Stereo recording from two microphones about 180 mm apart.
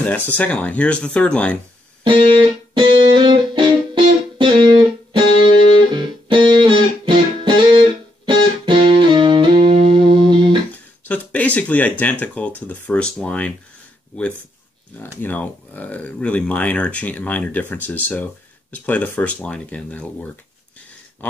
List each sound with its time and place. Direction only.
0.0 s speech: 10° left (ahead or behind)
2.7 s music: 30° right (ahead or behind)
11.1 s speech: 10° left (ahead or behind)
15.2 s speech: 10° left (ahead or behind)